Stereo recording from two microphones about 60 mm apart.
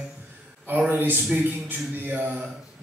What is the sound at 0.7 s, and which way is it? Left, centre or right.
Speech, right.